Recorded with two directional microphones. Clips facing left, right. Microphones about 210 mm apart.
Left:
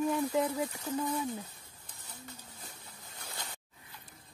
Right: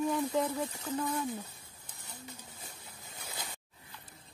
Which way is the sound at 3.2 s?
5° right (ahead or behind).